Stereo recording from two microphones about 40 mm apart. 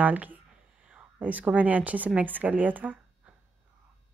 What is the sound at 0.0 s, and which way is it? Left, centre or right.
A woman's voice, right.